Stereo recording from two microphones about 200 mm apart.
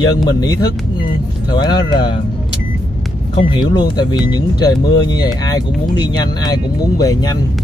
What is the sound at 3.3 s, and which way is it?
Speech, 20° left (ahead or behind).